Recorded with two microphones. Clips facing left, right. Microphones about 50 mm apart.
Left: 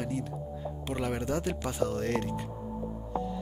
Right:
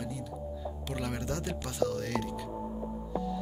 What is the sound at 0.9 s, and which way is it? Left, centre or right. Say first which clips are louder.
Speech: left 4 dB; centre.